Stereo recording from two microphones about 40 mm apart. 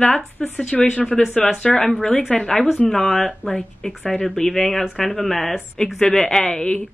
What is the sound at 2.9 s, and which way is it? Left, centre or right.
Speech, centre.